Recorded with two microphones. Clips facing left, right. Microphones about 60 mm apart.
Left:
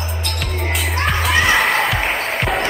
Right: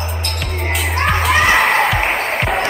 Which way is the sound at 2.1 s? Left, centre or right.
Centre.